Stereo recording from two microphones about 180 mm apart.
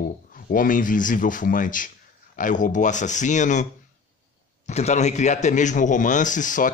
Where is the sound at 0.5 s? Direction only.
50° left (ahead or behind).